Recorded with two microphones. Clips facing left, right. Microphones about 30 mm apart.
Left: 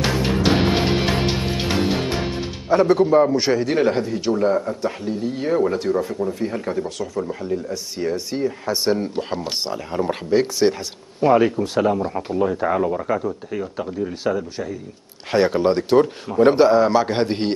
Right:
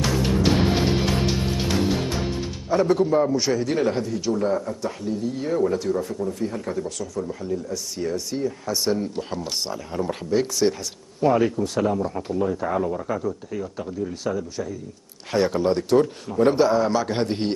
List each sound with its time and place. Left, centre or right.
0.0 s music: left